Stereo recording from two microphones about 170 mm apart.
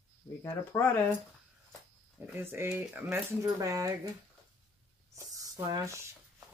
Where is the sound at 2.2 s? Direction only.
10° right (ahead or behind).